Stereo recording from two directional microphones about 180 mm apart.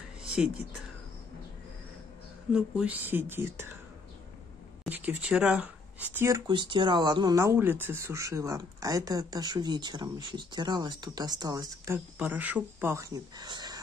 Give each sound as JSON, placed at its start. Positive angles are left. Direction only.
{"t": 0.2, "sound": "speech", "side_deg": -5}
{"t": 2.5, "sound": "speech", "side_deg": -5}
{"t": 4.8, "sound": "speech", "side_deg": -10}
{"t": 6.1, "sound": "speech", "side_deg": -15}
{"t": 12.2, "sound": "speech", "side_deg": -10}